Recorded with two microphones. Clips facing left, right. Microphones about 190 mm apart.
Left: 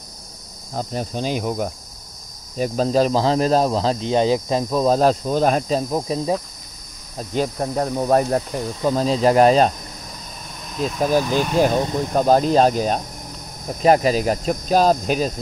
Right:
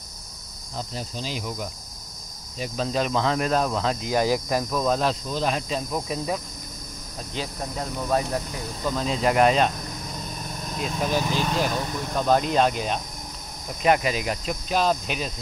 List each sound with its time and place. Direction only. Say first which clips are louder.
0.7 s cricket: left 8 dB; 55° left (ahead or behind)
2.5 s speech: left 8 dB; 45° left (ahead or behind); by 6.4 s 30° left (ahead or behind)
7.2 s cricket: left 10 dB; 50° left (ahead or behind)
8.8 s speech: left 7 dB; 35° left (ahead or behind)
10.8 s speech: left 7 dB; 40° left (ahead or behind)
11.8 s speech: left 7 dB; 30° left (ahead or behind)